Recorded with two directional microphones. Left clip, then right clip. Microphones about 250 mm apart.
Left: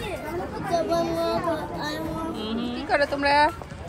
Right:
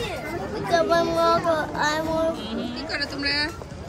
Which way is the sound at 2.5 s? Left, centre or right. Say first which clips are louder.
Left 4 dB; centre.